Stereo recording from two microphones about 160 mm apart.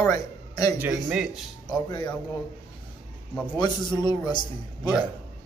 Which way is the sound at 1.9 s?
25° left (ahead or behind).